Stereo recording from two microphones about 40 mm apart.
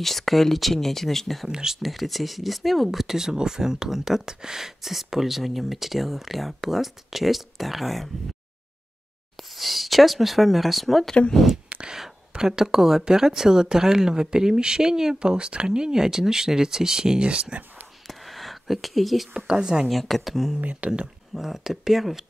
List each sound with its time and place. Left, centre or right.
0.0 s speech: centre
1.5 s speech: centre
1.8 s speech: centre
9.4 s speech: centre
11.7 s whispering: right
12.3 s speech: centre
17.3 s speech: right
18.0 s a sound: centre
19.3 s speech: centre
19.9 s speech: centre
20.6 s speech: right
21.4 s speech: centre